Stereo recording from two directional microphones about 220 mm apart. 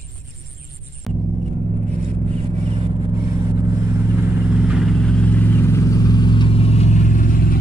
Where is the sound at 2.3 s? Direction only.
25° right (ahead or behind).